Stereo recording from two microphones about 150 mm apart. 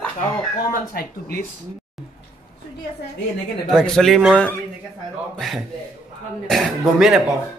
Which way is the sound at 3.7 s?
5° left (ahead or behind).